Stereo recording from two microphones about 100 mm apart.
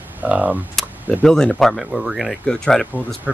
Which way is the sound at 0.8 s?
5° left (ahead or behind).